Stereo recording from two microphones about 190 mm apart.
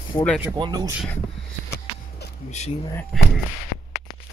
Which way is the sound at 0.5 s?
20° right (ahead or behind).